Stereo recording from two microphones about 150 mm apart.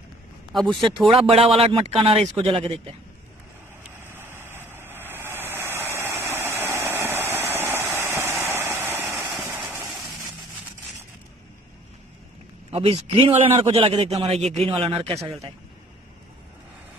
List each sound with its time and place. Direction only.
0.5 s speech: centre (ahead or behind)
0.7 s speech: 30° right (ahead or behind)
3.8 s vehicle: 15° right (ahead or behind)
6.9 s a sound: 15° right (ahead or behind)
9.4 s vehicle: 15° right (ahead or behind)
12.7 s speech: 40° right (ahead or behind)